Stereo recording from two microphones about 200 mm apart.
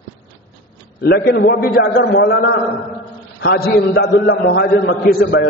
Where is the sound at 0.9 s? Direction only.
50° left (ahead or behind).